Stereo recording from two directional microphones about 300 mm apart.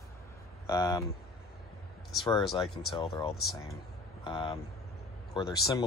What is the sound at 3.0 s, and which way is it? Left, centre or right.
Speech, centre.